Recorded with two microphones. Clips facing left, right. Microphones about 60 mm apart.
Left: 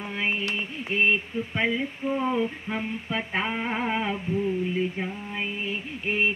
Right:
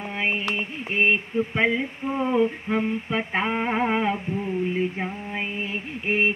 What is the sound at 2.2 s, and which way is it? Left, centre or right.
Mantra, centre.